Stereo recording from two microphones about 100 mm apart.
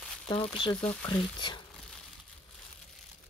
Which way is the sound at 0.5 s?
60° left (ahead or behind).